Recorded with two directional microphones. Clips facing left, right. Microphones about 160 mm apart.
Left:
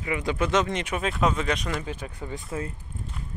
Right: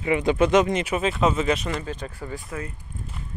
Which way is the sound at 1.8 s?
10° left (ahead or behind).